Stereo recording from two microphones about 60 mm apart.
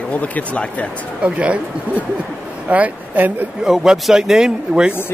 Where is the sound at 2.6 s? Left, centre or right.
Right.